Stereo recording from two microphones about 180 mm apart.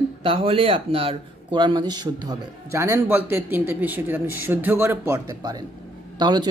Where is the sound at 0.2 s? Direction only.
30° right (ahead or behind).